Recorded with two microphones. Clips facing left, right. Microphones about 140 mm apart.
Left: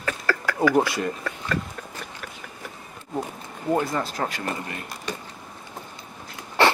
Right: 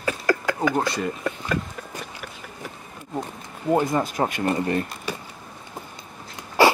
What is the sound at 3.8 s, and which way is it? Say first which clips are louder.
Speech: right 3 dB; 20° right (ahead or behind).